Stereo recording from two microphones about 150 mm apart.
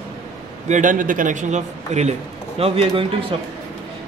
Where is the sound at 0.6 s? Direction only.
55° right (ahead or behind).